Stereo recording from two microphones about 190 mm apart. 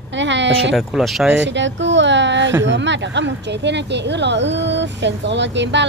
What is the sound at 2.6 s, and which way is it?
A woman's voice, 70° right (ahead or behind).